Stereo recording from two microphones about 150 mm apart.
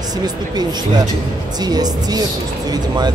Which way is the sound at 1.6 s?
25° right (ahead or behind).